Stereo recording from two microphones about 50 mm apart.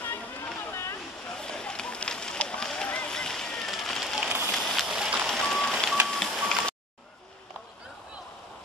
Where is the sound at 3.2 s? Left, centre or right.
Centre.